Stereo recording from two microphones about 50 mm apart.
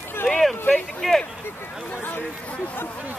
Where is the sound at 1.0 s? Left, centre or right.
Centre.